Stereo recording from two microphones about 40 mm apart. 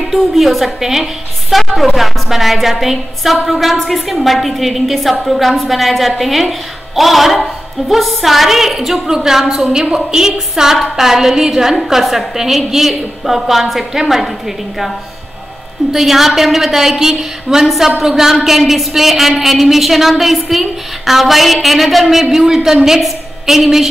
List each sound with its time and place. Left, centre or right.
0.1 s a woman's voice: centre
15.9 s a woman's voice: centre